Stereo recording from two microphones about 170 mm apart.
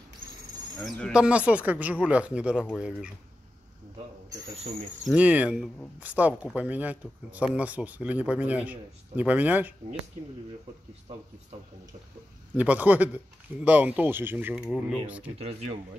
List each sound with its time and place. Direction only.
0.7 s speech: 5° left (ahead or behind)
1.1 s speech: 5° right (ahead or behind)
5.0 s speech: 5° right (ahead or behind)
12.5 s speech: 10° right (ahead or behind)
15.3 s speech: 35° right (ahead or behind)